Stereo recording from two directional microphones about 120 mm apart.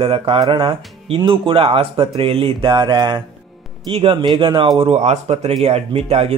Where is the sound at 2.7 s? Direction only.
40° right (ahead or behind).